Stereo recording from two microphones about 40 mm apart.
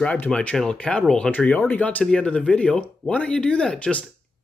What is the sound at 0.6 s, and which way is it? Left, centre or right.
Speech, left.